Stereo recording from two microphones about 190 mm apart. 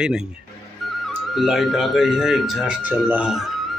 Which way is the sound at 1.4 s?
Centre (ahead or behind).